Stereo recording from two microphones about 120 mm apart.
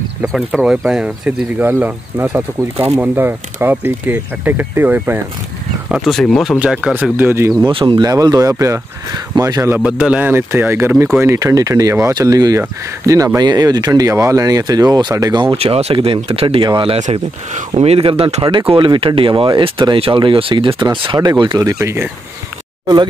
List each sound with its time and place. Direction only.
0.2 s speech: 5° left (ahead or behind); by 5.2 s 15° right (ahead or behind)
5.9 s speech: centre (ahead or behind)
6.6 s speech: 10° right (ahead or behind)
7.6 s speech: 40° right (ahead or behind); by 9.8 s 25° right (ahead or behind)
9.8 s speech: 10° right (ahead or behind); by 15.4 s 35° right (ahead or behind)
15.5 s speech: 55° right (ahead or behind)
17.0 s speech: 75° right (ahead or behind); by 18.4 s 55° right (ahead or behind)
18.4 s speech: 35° right (ahead or behind)
21.6 s speech: 25° right (ahead or behind)